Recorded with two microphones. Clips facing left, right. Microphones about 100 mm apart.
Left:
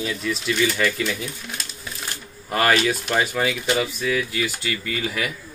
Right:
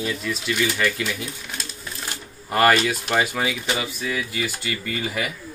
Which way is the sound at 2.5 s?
Centre (ahead or behind).